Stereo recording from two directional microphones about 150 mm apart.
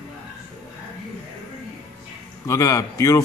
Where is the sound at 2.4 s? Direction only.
20° left (ahead or behind).